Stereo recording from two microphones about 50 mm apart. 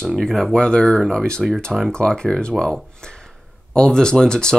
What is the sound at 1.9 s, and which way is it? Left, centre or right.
Speech, centre.